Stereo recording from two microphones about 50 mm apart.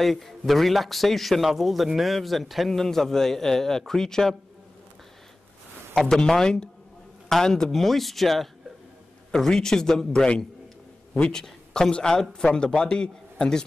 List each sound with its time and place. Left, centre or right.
0.0 s a man's voice: centre
5.9 s a man's voice: centre